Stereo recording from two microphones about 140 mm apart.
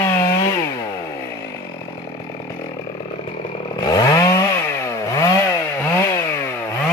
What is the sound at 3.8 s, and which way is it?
Chainsaw, 30° left (ahead or behind).